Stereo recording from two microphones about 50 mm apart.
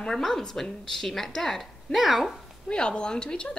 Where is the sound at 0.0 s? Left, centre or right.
Centre.